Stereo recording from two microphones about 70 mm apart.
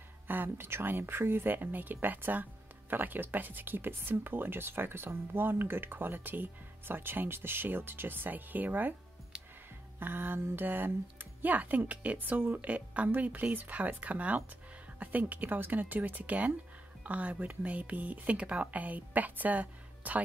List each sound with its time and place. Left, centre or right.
0.3 s speech: right
9.9 s speech: right